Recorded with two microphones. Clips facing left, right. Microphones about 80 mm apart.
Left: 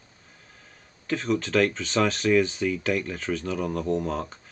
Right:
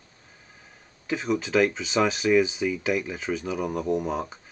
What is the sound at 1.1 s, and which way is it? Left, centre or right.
Speech, centre.